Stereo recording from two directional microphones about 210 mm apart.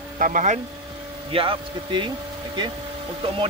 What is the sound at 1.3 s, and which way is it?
Speech, 25° right (ahead or behind).